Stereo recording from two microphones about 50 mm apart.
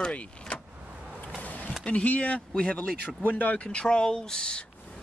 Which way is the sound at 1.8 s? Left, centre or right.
Left.